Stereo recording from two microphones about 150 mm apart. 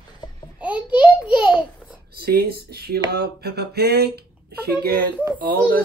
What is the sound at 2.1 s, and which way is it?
Speech, 90° right.